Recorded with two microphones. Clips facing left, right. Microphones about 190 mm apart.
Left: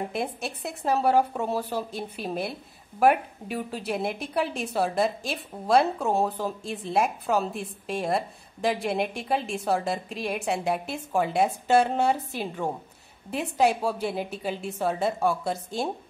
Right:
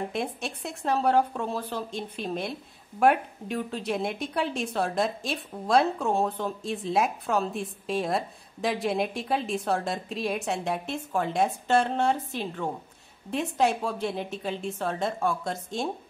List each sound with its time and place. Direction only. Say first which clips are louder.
0.1 s a woman's voice: left 1 dB; 5° left (ahead or behind)